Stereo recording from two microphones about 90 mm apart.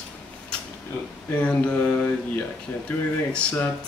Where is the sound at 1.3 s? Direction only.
15° left (ahead or behind).